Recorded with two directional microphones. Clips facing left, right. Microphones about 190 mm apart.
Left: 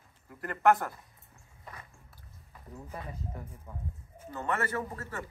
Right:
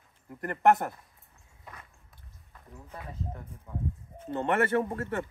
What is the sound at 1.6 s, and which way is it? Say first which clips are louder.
Walk: left 1 dB; centre (ahead or behind).